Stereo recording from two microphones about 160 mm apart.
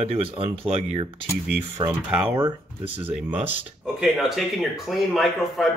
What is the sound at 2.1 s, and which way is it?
Speech, 10° right (ahead or behind).